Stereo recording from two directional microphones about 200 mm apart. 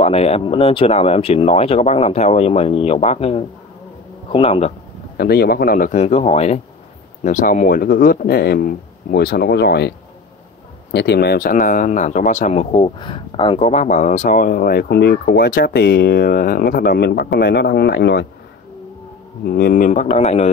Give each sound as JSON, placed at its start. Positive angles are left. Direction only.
{"t": 0.0, "sound": "a man's voice", "side_deg": 30}
{"t": 5.1, "sound": "speech", "side_deg": 50}
{"t": 19.4, "sound": "speech", "side_deg": 50}